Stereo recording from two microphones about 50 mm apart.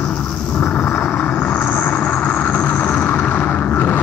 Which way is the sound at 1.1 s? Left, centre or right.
Left.